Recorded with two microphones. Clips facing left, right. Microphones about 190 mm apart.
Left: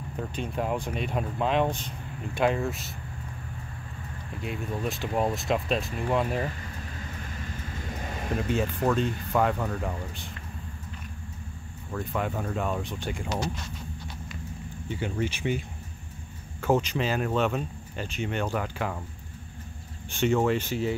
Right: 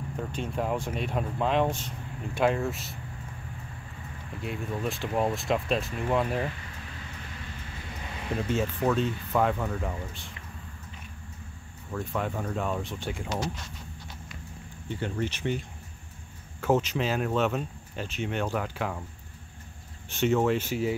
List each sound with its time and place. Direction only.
0.3 s speech: centre (ahead or behind)
4.4 s speech: centre (ahead or behind)
8.0 s a sound: 45° left (ahead or behind)
8.4 s speech: centre (ahead or behind)
11.9 s speech: centre (ahead or behind)
14.9 s speech: 10° left (ahead or behind)
16.6 s speech: centre (ahead or behind)
20.1 s speech: centre (ahead or behind)